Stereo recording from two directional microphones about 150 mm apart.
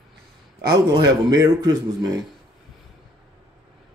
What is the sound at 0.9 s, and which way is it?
A man's voice, 25° right (ahead or behind).